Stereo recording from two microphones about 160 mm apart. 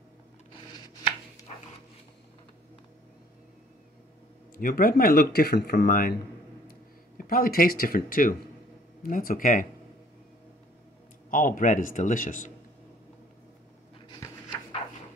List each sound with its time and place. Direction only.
0.5 s chopping: 25° left (ahead or behind)
4.6 s speech: 65° left (ahead or behind)
7.2 s speech: 65° left (ahead or behind)
11.2 s a man's voice: 55° left (ahead or behind)